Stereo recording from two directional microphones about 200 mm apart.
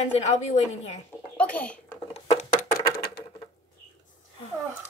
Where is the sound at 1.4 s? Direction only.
5° left (ahead or behind).